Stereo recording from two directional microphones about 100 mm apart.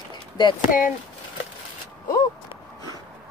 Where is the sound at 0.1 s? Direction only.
50° left (ahead or behind).